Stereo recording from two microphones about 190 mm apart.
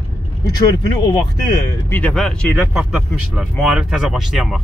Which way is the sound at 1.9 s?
5° left (ahead or behind).